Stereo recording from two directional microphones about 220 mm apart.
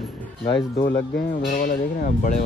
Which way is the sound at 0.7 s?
20° left (ahead or behind).